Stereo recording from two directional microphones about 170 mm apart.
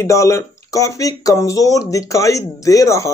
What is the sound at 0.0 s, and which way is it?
Speech, 20° left (ahead or behind).